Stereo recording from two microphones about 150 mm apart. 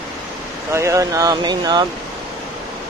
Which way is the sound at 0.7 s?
20° right (ahead or behind).